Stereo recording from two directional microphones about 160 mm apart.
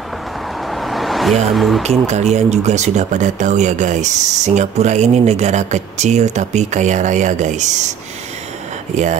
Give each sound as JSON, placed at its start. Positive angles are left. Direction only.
{"t": 0.8, "sound": "vehicle", "side_deg": 0}
{"t": 1.5, "sound": "speech", "side_deg": 0}
{"t": 1.8, "sound": "speech", "side_deg": -45}
{"t": 8.9, "sound": "speech", "side_deg": -50}